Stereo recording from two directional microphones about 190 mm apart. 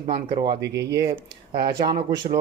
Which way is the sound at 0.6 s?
65° right (ahead or behind).